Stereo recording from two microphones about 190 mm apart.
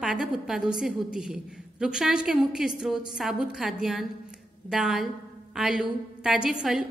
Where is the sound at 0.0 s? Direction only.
5° right (ahead or behind).